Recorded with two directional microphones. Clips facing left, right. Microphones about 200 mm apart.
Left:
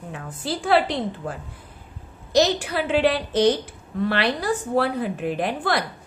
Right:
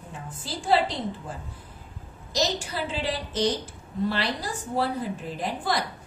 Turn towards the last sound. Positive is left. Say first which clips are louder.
# left 4 dB
turn(degrees=65)  # may be behind; listen again after turning